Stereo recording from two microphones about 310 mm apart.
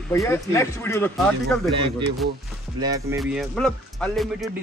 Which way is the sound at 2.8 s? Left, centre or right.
Centre.